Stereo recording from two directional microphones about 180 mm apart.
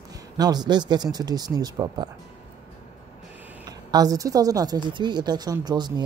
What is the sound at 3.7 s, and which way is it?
Speech, 20° right (ahead or behind).